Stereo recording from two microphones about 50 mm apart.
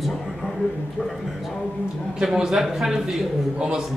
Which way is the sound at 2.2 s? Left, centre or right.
Centre.